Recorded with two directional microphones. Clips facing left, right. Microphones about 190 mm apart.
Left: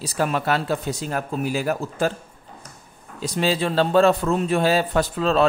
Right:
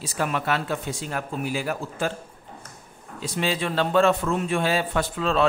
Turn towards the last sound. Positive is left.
turn(degrees=40)  # may be behind; listen again after turning